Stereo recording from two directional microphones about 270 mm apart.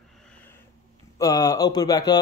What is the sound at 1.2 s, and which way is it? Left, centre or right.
Speech, centre.